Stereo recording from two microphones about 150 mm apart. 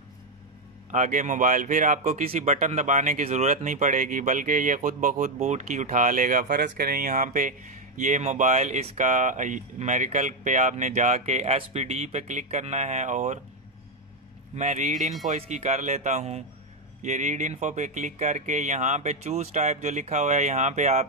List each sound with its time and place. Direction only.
0.9 s speech: 55° right (ahead or behind)
14.5 s speech: 50° right (ahead or behind)